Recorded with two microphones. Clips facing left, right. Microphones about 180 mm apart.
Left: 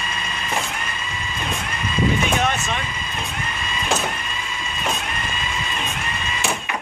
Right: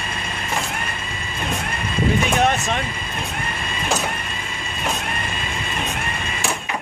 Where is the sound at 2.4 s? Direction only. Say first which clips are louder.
Right 4 dB; 50° right (ahead or behind).